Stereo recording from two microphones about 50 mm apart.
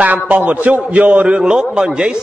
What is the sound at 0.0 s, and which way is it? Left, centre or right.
A man's voice, right.